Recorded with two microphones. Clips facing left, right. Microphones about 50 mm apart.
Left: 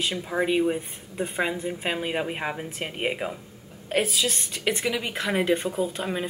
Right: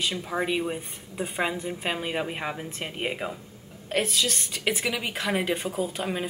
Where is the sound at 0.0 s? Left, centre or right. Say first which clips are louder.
Left 2 dB; centre.